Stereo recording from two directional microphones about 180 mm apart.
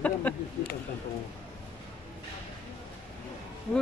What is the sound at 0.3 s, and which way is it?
Speech, 10° left (ahead or behind).